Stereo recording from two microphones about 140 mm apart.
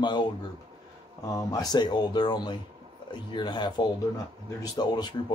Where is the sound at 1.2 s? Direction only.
25° left (ahead or behind).